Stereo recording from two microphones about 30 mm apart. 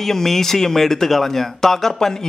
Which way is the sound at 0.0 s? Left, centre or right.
Centre.